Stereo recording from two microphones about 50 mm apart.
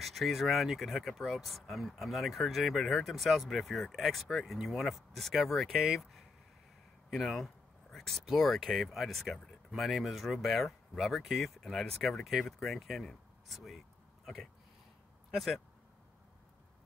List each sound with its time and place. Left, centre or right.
0.0 s speech: centre